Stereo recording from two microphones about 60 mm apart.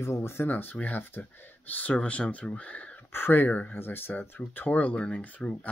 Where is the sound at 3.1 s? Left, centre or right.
Left.